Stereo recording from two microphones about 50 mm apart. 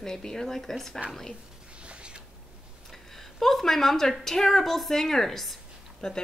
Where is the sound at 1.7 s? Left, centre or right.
Right.